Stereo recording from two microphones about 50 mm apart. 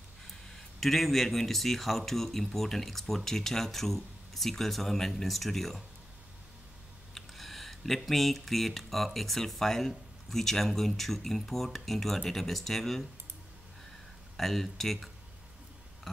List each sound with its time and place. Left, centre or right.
0.3 s speech: centre
7.2 s speech: centre
14.3 s speech: centre